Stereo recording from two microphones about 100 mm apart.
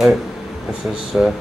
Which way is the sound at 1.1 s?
10° right (ahead or behind).